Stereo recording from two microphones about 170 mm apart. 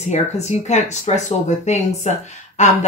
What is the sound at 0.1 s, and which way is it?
Speech, 40° left (ahead or behind).